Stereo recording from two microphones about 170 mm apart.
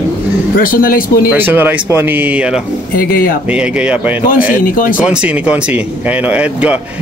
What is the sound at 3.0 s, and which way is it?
Speech, 60° left (ahead or behind).